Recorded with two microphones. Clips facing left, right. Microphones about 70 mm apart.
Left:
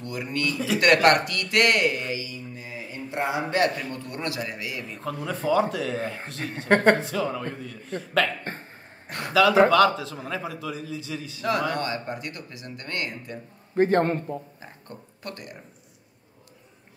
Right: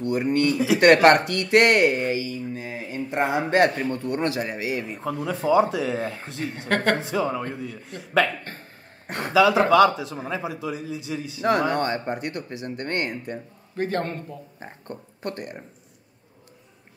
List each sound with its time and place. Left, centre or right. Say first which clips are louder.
0.0 s speech: right 7 dB; right
4.8 s a man's voice: right 3 dB; centre
9.0 s a sound: right 4 dB; right
9.3 s a man's voice: even; centre
11.4 s speech: right 4 dB; right
13.7 s a man's voice: left 6 dB; left
14.6 s speech: right 5 dB; right